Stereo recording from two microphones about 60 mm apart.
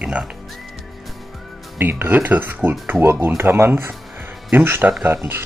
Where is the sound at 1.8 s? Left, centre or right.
Right.